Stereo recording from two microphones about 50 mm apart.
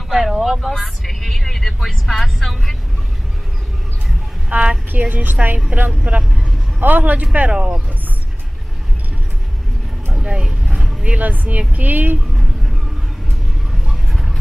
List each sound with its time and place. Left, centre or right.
0.1 s vehicle: centre
4.5 s a woman's voice: centre
4.9 s a woman's voice: right
5.7 s a woman's voice: right
7.3 s speech: right
10.2 s vehicle: centre
10.8 s a sound: centre
11.1 s a woman's voice: right
14.1 s vehicle: centre